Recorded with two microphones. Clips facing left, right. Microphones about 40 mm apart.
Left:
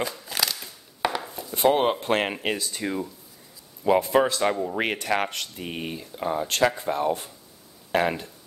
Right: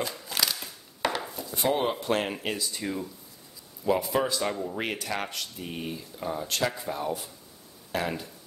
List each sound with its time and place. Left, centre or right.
0.0 s a sound: centre
1.3 s speech: left
2.8 s speech: left
3.8 s speech: left